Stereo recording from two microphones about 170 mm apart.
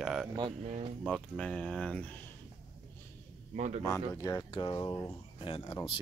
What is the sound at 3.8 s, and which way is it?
Speech, 20° left (ahead or behind).